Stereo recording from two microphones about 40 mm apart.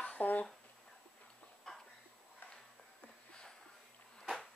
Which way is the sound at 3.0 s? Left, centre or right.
Left.